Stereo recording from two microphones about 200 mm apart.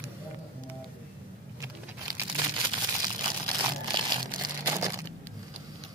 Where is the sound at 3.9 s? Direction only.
20° right (ahead or behind).